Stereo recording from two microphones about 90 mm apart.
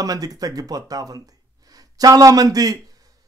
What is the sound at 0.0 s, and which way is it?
Speech, 40° right (ahead or behind).